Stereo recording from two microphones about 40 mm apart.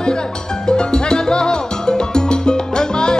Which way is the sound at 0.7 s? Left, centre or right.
Centre.